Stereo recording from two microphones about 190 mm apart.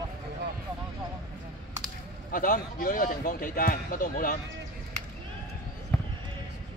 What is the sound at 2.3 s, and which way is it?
Speech, 45° left (ahead or behind).